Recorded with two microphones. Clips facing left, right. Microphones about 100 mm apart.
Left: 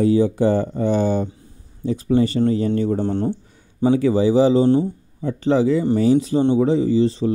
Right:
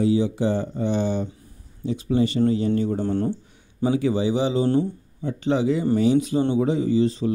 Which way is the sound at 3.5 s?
40° left (ahead or behind).